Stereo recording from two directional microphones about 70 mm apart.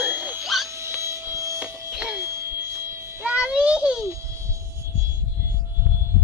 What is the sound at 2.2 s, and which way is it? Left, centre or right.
Babbling, right.